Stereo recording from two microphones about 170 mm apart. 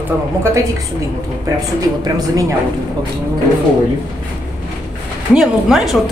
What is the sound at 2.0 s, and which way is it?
Speech, 20° right (ahead or behind).